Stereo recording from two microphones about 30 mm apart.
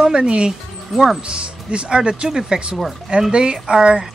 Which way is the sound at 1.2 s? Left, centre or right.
Right.